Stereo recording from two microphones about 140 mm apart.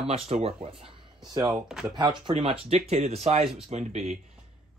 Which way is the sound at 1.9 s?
35° right (ahead or behind).